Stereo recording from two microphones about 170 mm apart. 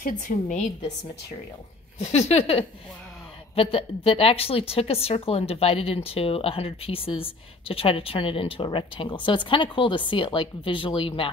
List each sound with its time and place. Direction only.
0.0 s a woman's voice: 45° left (ahead or behind)
2.0 s a woman's voice: 40° left (ahead or behind)